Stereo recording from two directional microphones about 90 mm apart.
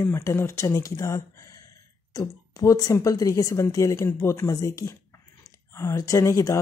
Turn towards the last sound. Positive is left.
turn(degrees=35)  # may be behind; listen again after turning